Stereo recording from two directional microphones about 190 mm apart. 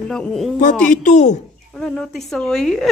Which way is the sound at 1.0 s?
40° left (ahead or behind).